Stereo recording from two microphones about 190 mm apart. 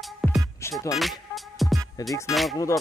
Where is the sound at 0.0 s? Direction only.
Centre (ahead or behind).